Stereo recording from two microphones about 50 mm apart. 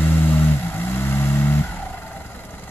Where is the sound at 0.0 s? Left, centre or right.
Left.